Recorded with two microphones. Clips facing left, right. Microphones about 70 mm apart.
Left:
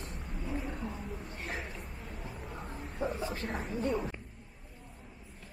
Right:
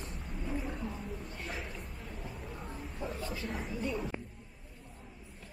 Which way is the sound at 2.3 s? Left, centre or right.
Centre.